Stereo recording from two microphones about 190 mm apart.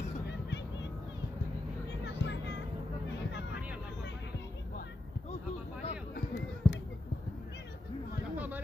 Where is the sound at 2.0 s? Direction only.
65° left (ahead or behind).